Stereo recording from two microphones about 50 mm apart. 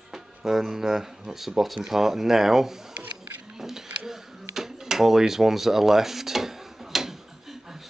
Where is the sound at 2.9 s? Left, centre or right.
Right.